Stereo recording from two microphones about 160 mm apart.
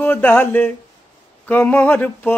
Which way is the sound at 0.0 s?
10° left (ahead or behind).